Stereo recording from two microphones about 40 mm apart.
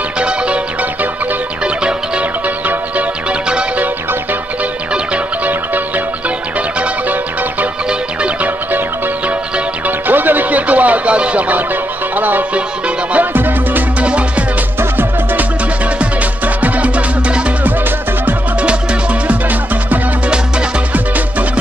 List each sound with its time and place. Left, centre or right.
1.8 s music: right
9.8 s music: right
12.5 s music: right
13.2 s music: right
16.0 s music: right